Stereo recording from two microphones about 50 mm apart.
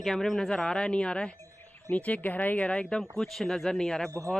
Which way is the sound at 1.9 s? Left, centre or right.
Left.